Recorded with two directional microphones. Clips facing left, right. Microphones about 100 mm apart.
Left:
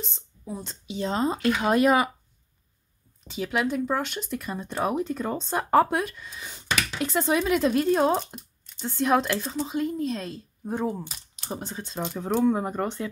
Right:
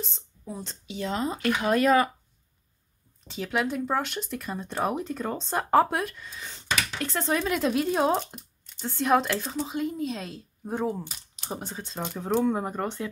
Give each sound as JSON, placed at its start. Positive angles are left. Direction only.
{"t": 0.0, "sound": "speech", "side_deg": 0}
{"t": 0.8, "sound": "speech", "side_deg": 30}
{"t": 3.3, "sound": "speech", "side_deg": 0}